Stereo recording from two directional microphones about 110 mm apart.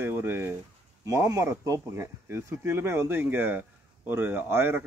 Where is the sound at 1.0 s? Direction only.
30° right (ahead or behind).